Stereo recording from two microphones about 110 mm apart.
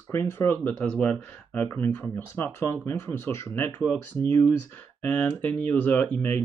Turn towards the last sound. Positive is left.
turn(degrees=10)  # may be behind; listen again after turning